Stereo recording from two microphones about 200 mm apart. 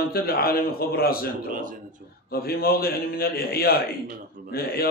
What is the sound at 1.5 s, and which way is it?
Speech, 40° right (ahead or behind).